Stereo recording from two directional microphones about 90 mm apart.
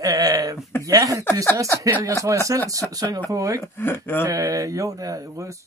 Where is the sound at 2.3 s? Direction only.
35° right (ahead or behind).